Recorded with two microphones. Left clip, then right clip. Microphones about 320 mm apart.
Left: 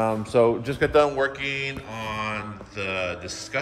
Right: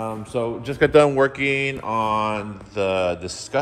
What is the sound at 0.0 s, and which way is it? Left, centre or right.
Speech, centre.